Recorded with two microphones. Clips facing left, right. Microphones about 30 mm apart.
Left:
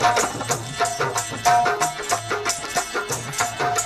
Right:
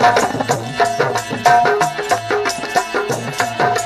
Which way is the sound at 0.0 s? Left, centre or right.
Right.